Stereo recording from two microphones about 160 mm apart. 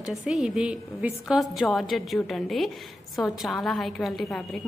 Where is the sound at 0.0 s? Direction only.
5° right (ahead or behind).